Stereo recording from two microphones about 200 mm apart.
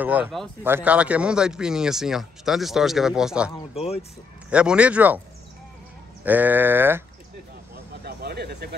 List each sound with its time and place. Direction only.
0.0 s speech: 10° right (ahead or behind)
3.7 s speech: 30° left (ahead or behind)
4.5 s speech: 5° right (ahead or behind)
6.2 s speech: 10° right (ahead or behind)
8.0 s speech: 50° right (ahead or behind)